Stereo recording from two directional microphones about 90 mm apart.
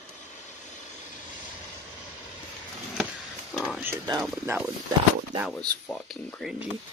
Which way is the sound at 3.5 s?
10° right (ahead or behind).